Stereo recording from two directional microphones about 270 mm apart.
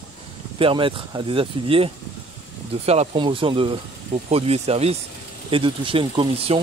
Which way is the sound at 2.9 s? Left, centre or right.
Right.